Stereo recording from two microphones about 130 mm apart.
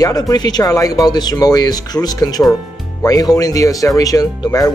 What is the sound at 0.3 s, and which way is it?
Speech, 30° left (ahead or behind).